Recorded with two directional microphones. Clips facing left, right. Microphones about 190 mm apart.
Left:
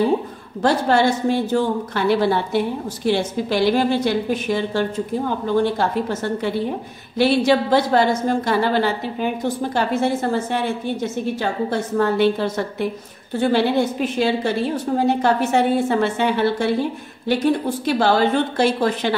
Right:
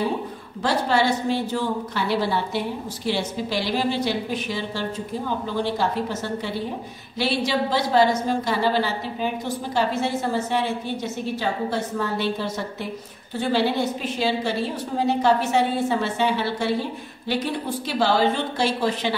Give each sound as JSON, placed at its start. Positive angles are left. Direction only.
{"t": 0.6, "sound": "a woman's voice", "side_deg": 50}
{"t": 7.2, "sound": "a woman's voice", "side_deg": 55}
{"t": 17.8, "sound": "a woman's voice", "side_deg": 50}